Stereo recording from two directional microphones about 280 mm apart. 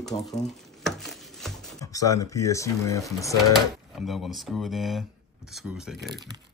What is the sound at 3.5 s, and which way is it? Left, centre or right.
Speech, centre.